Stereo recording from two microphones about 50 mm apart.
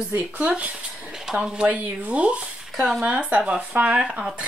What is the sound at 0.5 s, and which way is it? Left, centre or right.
Speech, right.